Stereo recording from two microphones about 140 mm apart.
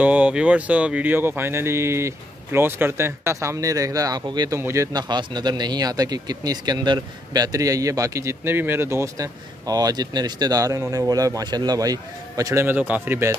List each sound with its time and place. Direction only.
0.0 s speech: 10° right (ahead or behind); by 4.6 s 30° right (ahead or behind)
4.6 s speech: 20° right (ahead or behind)
4.9 s speech: 30° right (ahead or behind); by 13.4 s 15° right (ahead or behind)